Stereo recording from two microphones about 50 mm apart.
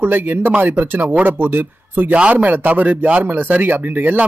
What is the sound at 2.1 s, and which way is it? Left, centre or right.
Speech, right.